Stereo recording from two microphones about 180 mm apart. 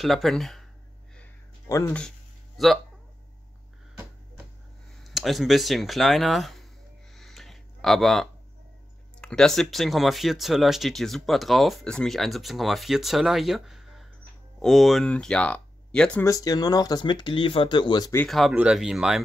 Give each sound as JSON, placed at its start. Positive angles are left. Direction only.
{"t": 0.0, "sound": "speech", "side_deg": 0}
{"t": 2.0, "sound": "a sound", "side_deg": 0}
{"t": 5.0, "sound": "speech", "side_deg": 0}
{"t": 7.2, "sound": "a sound", "side_deg": 0}
{"t": 9.2, "sound": "speech", "side_deg": 5}
{"t": 16.3, "sound": "speech", "side_deg": 20}
{"t": 18.1, "sound": "speech", "side_deg": 5}